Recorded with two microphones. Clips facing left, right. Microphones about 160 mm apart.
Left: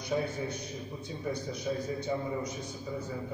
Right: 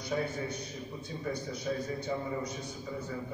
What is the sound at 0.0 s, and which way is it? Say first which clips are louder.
A man's voice: left 1 dB; 15° left (ahead or behind).